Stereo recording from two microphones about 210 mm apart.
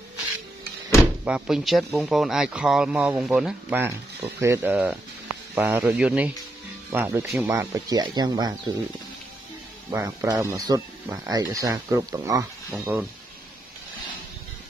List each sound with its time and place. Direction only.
1.2 s speech: 5° right (ahead or behind); by 8.7 s 20° right (ahead or behind)
9.8 s speech: 15° right (ahead or behind)